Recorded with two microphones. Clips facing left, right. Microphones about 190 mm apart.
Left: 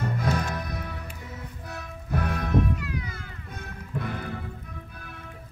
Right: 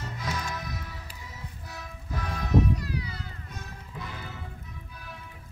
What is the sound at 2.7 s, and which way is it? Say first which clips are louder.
Music: even; 35° right (ahead or behind).